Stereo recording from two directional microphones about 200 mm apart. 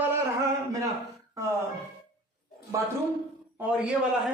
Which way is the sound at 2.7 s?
15° right (ahead or behind).